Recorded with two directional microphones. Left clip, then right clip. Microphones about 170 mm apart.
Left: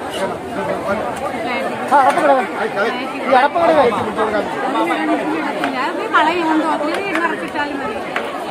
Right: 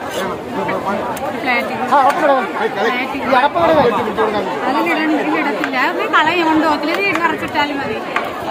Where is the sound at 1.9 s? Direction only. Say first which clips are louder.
Even; 5° left (ahead or behind).